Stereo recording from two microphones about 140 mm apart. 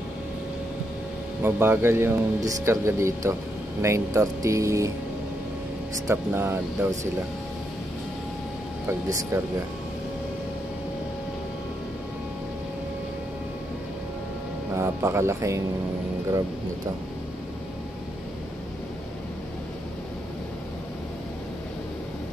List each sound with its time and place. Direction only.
1.4 s speech: 15° right (ahead or behind)
6.0 s speech: 15° right (ahead or behind)
8.8 s speech: 20° right (ahead or behind)
14.8 s speech: 20° right (ahead or behind)